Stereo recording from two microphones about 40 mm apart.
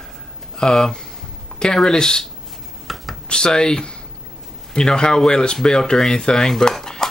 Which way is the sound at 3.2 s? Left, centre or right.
Left.